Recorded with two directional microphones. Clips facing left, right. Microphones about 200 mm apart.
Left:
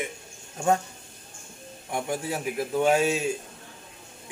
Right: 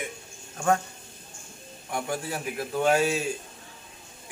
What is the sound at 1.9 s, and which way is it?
A man's voice, 20° left (ahead or behind).